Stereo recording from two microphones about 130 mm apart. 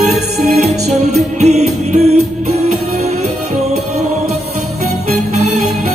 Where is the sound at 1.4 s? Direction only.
60° right (ahead or behind).